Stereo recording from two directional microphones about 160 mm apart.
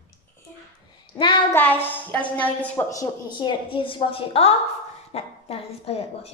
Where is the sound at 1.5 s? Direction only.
10° left (ahead or behind); by 6.3 s 40° left (ahead or behind).